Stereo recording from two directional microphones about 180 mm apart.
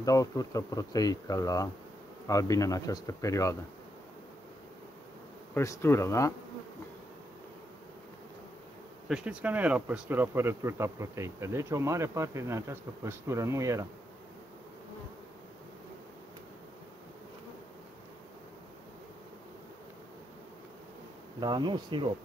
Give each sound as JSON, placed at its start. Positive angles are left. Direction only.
{"t": 0.0, "sound": "speech", "side_deg": 20}
{"t": 5.5, "sound": "speech", "side_deg": 15}
{"t": 9.1, "sound": "speech", "side_deg": -5}
{"t": 21.4, "sound": "bee", "side_deg": -25}